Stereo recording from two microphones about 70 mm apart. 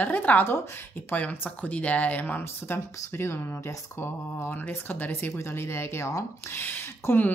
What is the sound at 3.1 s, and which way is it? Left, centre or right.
Speech, left.